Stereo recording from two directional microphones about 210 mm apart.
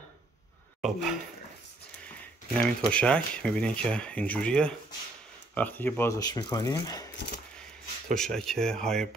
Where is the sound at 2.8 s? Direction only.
5° left (ahead or behind).